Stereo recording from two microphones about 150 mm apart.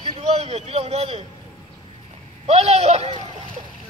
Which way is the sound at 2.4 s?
45° right (ahead or behind).